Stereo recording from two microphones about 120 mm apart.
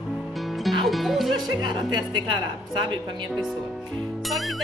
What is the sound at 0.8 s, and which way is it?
Music, centre (ahead or behind).